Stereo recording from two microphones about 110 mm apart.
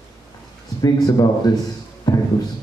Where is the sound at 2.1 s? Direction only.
35° left (ahead or behind).